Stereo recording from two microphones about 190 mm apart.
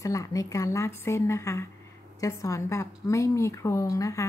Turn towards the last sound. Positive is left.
turn(degrees=15)  # may be behind; listen again after turning